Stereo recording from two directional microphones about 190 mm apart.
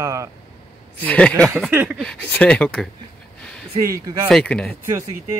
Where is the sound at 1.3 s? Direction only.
15° right (ahead or behind).